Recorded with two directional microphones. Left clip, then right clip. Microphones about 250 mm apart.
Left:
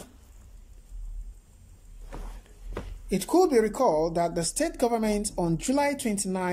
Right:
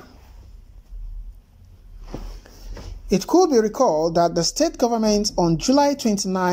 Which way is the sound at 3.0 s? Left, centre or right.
Centre.